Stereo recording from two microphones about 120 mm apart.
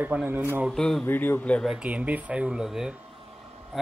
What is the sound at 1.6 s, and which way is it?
A man's voice, 10° right (ahead or behind).